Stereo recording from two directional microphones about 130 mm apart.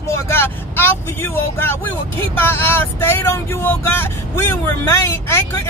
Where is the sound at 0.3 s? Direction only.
20° left (ahead or behind).